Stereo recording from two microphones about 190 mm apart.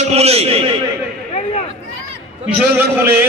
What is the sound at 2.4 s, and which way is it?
Speech, 5° right (ahead or behind).